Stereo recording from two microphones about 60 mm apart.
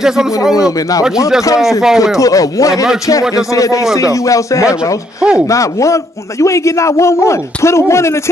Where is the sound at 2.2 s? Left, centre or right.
Left.